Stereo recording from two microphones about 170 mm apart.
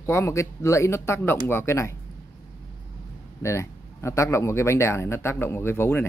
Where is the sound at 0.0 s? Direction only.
15° left (ahead or behind).